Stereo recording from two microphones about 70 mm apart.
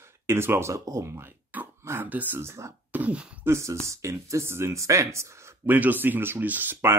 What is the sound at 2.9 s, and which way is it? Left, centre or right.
Speech, right.